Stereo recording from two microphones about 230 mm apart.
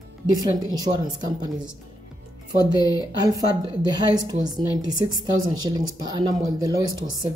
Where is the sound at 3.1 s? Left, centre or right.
Centre.